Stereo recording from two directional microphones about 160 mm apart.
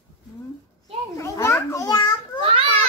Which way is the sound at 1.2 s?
15° left (ahead or behind).